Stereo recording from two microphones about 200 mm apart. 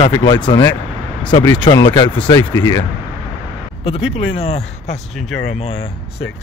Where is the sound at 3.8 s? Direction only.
30° left (ahead or behind).